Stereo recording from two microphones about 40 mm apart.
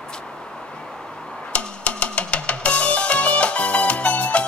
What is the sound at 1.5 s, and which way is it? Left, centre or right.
Music, left.